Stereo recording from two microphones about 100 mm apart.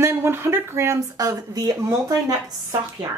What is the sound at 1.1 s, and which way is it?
A woman's voice, 40° right (ahead or behind).